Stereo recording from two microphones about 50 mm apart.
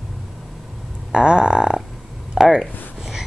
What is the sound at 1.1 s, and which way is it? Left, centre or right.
Speech, centre.